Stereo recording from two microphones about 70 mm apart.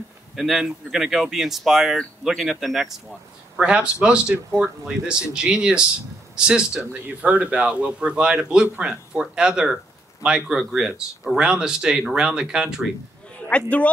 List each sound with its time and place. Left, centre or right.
0.4 s speech: centre
3.5 s speech: centre
13.5 s speech: centre